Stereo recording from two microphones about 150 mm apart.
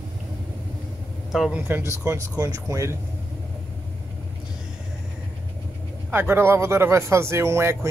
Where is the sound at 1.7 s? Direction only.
15° right (ahead or behind).